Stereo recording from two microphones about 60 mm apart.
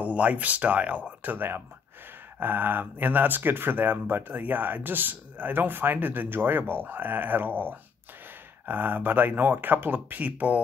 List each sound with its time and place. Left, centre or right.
0.0 s speech: right